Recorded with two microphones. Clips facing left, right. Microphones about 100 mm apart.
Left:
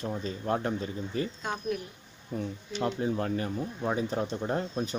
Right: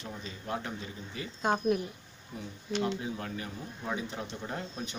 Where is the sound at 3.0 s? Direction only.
40° left (ahead or behind).